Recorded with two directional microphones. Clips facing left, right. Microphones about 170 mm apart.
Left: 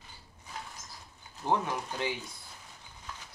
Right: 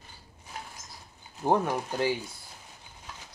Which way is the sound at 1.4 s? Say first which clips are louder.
Right 5 dB; 45° right (ahead or behind).